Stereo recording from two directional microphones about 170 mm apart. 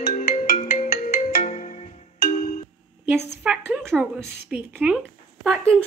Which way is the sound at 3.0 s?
15° right (ahead or behind).